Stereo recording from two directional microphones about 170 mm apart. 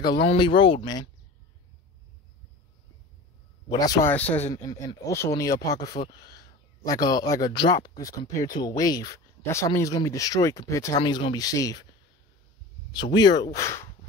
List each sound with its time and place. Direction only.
0.0 s a man's voice: 25° left (ahead or behind)
3.6 s a man's voice: 20° left (ahead or behind)
4.1 s a man's voice: 10° left (ahead or behind)
12.9 s a man's voice: 25° left (ahead or behind)